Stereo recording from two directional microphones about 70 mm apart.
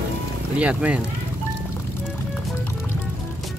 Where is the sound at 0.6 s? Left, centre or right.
Centre.